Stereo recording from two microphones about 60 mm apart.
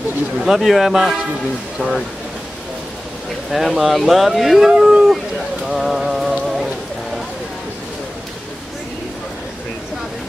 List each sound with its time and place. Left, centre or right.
0.4 s speech: centre
3.5 s speech: centre
4.9 s a sound: centre